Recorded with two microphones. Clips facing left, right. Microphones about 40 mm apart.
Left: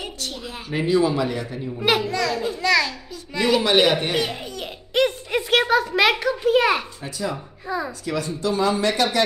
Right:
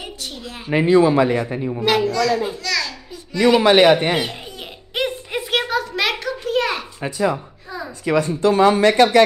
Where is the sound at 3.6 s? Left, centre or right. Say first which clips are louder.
Right 6 dB; right.